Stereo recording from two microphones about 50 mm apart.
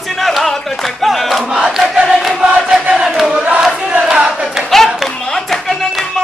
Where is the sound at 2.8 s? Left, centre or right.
Centre.